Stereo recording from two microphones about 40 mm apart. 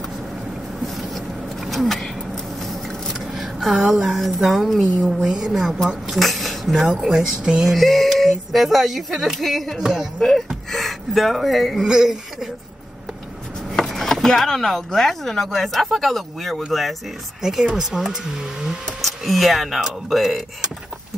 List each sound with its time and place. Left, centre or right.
0.8 s vehicle: centre
3.3 s a woman's voice: centre
5.1 s a woman's voice: centre
7.7 s speech: centre
9.8 s a woman's voice: centre
10.1 s speech: centre
11.9 s a woman's voice: centre
13.8 s speech: centre
17.4 s a woman's voice: centre
18.9 s speech: centre